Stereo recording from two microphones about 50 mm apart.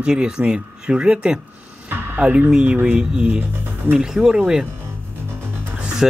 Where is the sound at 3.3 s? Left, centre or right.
Right.